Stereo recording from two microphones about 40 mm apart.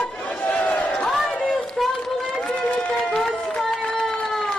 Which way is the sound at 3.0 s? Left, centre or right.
Centre.